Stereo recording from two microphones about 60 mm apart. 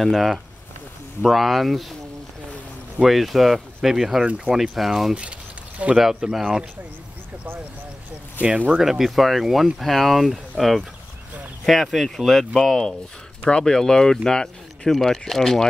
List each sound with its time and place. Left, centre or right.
0.0 s speech: centre
3.0 s speech: centre
8.4 s speech: right
8.7 s speech: centre